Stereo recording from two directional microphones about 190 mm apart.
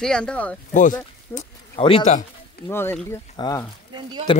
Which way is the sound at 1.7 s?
30° left (ahead or behind).